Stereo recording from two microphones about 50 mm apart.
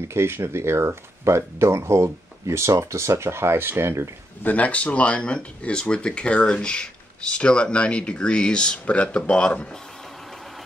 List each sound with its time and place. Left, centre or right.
0.1 s speech: right
4.4 s speech: left